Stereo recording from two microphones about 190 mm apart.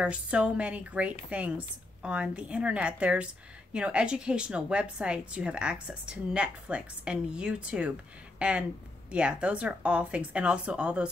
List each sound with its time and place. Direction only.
0.0 s a woman's voice: 5° right (ahead or behind)